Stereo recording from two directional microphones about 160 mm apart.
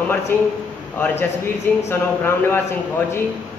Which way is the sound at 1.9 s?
15° left (ahead or behind).